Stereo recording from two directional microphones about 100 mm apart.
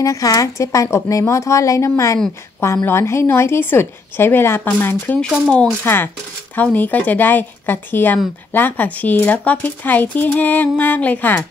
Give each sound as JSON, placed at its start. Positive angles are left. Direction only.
{"t": 0.0, "sound": "a woman's voice", "side_deg": 35}